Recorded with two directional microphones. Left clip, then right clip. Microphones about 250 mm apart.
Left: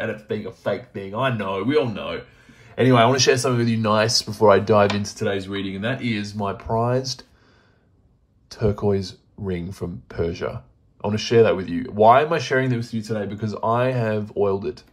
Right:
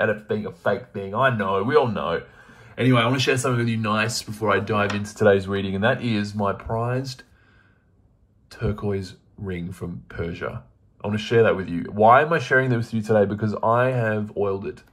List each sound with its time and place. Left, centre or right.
0.3 s speech: centre
1.7 s speech: centre
2.6 s a sound: centre
3.2 s speech: centre
5.2 s speech: centre
6.1 s speech: centre
7.0 s speech: centre
8.5 s speech: centre
12.8 s speech: centre
13.4 s speech: centre